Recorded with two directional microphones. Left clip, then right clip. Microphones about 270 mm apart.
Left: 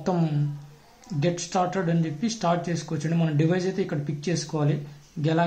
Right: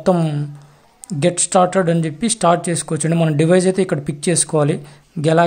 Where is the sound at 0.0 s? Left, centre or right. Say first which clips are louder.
Right 10 dB; right.